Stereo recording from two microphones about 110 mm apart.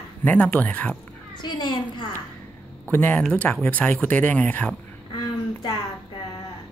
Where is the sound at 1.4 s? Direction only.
45° left (ahead or behind).